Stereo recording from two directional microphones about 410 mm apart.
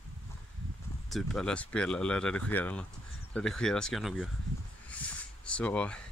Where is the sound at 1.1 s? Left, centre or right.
Centre.